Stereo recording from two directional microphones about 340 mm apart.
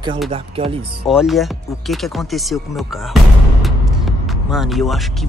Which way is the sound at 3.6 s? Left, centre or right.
Centre.